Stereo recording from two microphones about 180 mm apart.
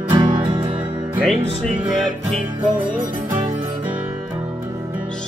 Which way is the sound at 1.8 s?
25° right (ahead or behind).